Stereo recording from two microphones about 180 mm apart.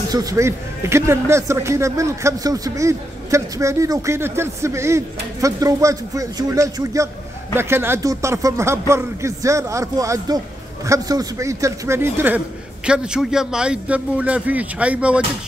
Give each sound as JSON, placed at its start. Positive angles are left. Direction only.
{"t": 0.1, "sound": "a man's voice", "side_deg": -20}